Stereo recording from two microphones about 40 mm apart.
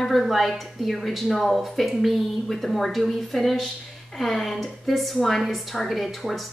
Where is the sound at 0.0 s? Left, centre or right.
Centre.